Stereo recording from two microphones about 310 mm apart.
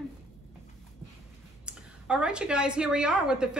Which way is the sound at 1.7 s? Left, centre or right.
Centre.